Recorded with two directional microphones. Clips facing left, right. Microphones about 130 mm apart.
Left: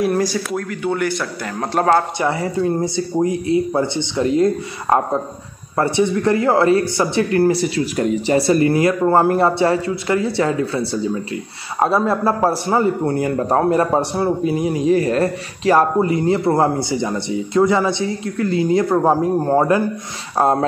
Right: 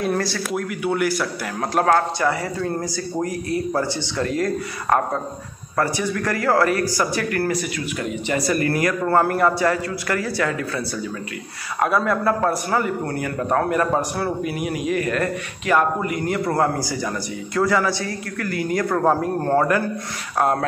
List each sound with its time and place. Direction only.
0.5 s speech: 5° right (ahead or behind)
2.1 s speech: 25° left (ahead or behind)